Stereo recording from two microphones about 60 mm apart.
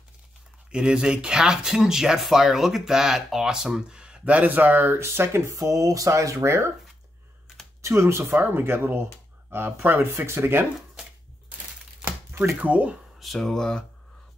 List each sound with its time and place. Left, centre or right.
0.7 s speech: centre; by 5.0 s right
5.0 s speech: right
7.8 s speech: right
12.5 s speech: right
13.2 s speech: centre